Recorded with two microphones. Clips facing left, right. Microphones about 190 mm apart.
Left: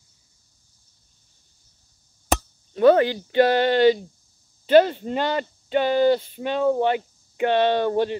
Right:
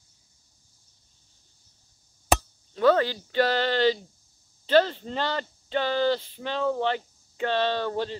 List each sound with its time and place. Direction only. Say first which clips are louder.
2.7 s speech: left 5 dB; 20° left (ahead or behind)